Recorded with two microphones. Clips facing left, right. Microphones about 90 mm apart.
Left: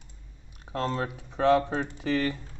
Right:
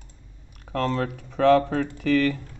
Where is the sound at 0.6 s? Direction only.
55° right (ahead or behind).